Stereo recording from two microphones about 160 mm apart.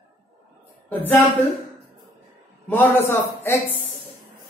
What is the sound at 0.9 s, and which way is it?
Speech, 10° left (ahead or behind).